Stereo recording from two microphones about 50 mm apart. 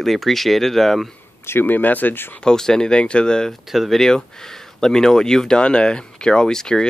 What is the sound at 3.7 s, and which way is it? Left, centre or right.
Speech, centre.